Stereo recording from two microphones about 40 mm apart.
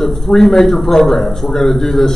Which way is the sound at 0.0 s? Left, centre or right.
Centre.